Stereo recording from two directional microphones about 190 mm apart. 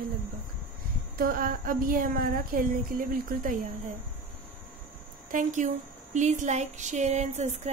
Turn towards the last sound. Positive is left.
turn(degrees=-35)  # may be behind; listen again after turning